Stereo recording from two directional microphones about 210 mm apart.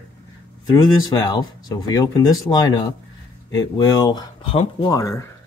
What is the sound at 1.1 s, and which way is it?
Speech, 20° left (ahead or behind).